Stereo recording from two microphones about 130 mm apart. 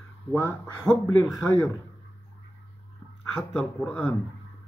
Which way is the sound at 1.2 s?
30° left (ahead or behind).